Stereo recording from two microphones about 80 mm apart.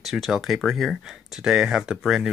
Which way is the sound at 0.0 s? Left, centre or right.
Centre.